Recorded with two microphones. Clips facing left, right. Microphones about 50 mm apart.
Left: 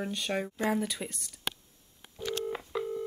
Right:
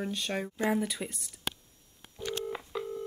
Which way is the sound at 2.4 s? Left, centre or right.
Centre.